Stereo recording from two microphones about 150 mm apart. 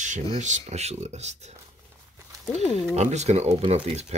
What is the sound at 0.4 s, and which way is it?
Speech, 50° right (ahead or behind).